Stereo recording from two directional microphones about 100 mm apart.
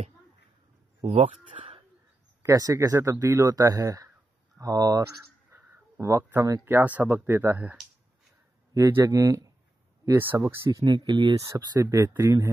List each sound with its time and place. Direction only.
1.6 s speech: 90° right
2.4 s speech: 35° right (ahead or behind)
5.5 s a sound: 25° right (ahead or behind)
6.6 s speech: 20° right (ahead or behind)
8.7 s speech: 35° right (ahead or behind)
10.1 s speech: 20° right (ahead or behind); by 11.5 s 45° right (ahead or behind)
11.5 s speech: 30° right (ahead or behind)